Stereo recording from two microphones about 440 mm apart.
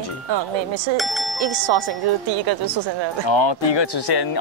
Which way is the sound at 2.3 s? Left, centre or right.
Right.